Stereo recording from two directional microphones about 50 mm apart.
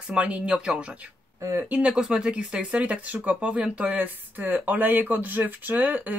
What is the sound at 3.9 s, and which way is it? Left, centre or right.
Speech, right.